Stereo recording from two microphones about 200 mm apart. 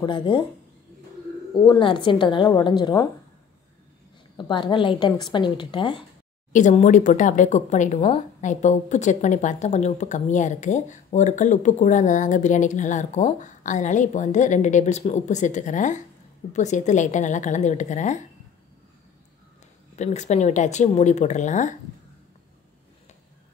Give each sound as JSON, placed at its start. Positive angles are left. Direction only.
{"t": 0.0, "sound": "a woman's voice", "side_deg": 25}
{"t": 1.5, "sound": "a woman's voice", "side_deg": 25}
{"t": 4.4, "sound": "a woman's voice", "side_deg": 25}
{"t": 6.5, "sound": "speech", "side_deg": 35}
{"t": 20.0, "sound": "speech", "side_deg": 35}